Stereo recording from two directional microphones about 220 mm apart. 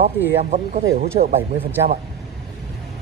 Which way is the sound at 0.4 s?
30° right (ahead or behind).